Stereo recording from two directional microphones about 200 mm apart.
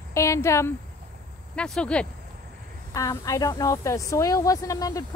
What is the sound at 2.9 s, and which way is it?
Speech, 15° left (ahead or behind).